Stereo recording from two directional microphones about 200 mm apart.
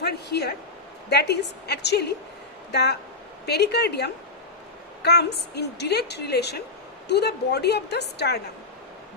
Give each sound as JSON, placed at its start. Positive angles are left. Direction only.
{"t": 0.0, "sound": "a woman's voice", "side_deg": 55}